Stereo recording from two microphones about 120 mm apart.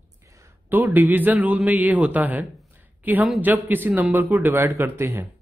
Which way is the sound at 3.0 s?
15° right (ahead or behind).